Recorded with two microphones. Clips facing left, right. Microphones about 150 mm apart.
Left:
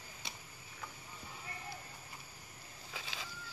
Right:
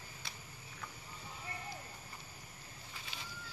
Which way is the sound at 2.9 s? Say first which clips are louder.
Left 4 dB; 90° left.